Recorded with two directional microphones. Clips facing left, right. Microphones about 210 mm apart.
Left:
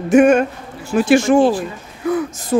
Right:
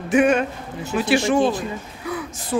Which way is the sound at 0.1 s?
45° left (ahead or behind).